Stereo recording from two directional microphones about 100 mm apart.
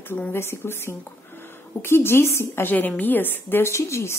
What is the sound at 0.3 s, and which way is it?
A woman's voice, 25° left (ahead or behind).